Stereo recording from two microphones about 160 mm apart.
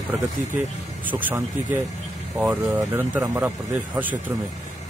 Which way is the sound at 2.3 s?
5° right (ahead or behind).